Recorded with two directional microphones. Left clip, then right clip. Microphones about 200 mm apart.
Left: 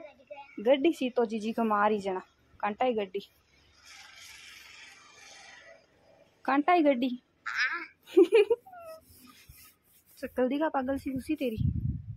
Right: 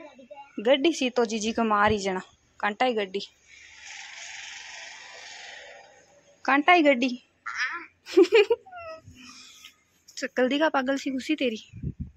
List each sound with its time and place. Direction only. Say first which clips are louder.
0.3 s a woman's voice: right 3 dB; centre (ahead or behind)
3.8 s a sound: right 9 dB; 55° left (ahead or behind)
6.4 s a woman's voice: right 5 dB; 5° right (ahead or behind)
7.5 s quack: even; 10° left (ahead or behind)
8.1 s speech: right 3 dB; centre (ahead or behind)
10.1 s speech: right 5 dB; 5° right (ahead or behind)